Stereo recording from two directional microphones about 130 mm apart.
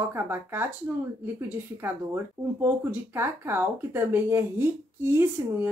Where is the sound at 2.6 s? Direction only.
20° right (ahead or behind).